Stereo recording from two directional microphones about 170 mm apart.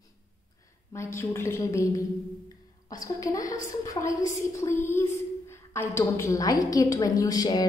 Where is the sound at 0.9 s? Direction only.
15° left (ahead or behind).